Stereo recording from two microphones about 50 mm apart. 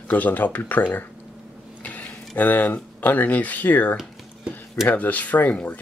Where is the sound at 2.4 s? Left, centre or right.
Left.